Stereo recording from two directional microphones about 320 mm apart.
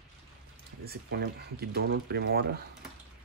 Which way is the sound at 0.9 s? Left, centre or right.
Right.